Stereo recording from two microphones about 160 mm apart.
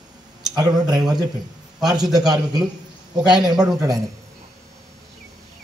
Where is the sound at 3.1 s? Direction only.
5° right (ahead or behind).